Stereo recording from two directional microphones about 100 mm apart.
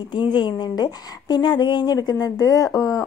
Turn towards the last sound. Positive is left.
turn(degrees=30)  # may be behind; listen again after turning